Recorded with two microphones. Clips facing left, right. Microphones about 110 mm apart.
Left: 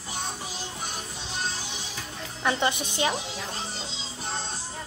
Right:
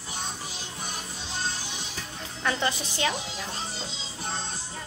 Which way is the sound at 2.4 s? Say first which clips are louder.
Left 2 dB; 20° left (ahead or behind).